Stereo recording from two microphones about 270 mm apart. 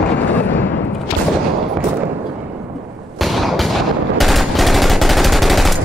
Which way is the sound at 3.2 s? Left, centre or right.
Centre.